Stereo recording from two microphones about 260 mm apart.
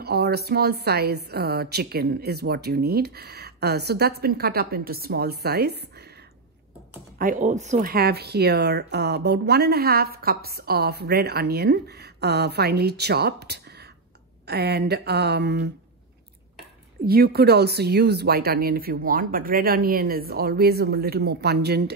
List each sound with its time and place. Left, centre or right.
0.0 s speech: right
7.2 s speech: right
17.0 s speech: right